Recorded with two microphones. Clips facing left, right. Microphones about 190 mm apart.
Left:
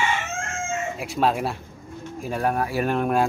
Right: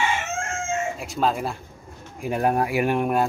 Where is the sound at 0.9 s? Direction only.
5° left (ahead or behind).